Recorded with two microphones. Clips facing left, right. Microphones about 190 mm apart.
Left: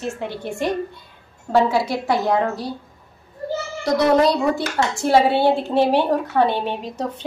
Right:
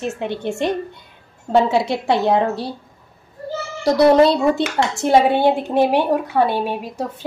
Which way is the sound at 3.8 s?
30° right (ahead or behind).